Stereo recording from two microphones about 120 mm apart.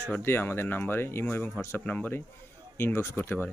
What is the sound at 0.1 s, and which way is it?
Speech, 20° left (ahead or behind).